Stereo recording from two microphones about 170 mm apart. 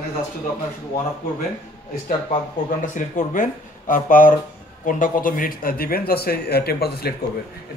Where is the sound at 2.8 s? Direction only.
50° left (ahead or behind); by 7.1 s 70° left (ahead or behind).